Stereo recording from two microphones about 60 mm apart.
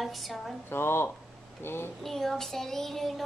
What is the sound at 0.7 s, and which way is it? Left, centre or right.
A woman's voice, left.